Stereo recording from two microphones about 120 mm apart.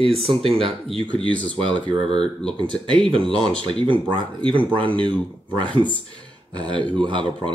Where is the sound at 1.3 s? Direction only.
10° left (ahead or behind).